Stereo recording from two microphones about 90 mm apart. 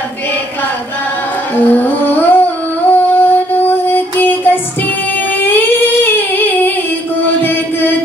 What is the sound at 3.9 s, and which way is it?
Child singing, 20° left (ahead or behind).